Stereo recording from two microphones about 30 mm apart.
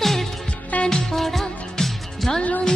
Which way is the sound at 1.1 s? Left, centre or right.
Centre.